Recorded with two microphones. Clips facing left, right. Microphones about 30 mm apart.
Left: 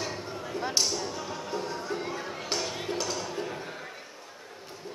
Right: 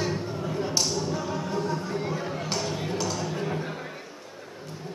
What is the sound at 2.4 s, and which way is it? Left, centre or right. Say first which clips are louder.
Music: right 2 dB; centre.